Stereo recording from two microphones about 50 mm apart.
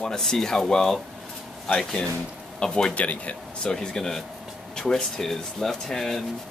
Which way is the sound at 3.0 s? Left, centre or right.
Left.